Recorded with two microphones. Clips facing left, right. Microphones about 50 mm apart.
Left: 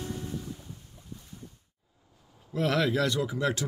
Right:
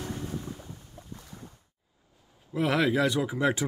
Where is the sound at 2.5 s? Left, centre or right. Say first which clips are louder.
Right 1 dB; centre.